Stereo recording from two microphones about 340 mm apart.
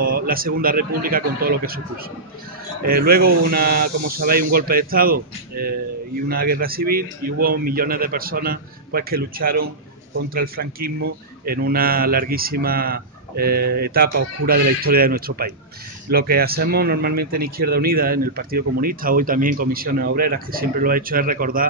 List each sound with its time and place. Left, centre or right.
0.0 s a man's voice: right
2.8 s a man's voice: right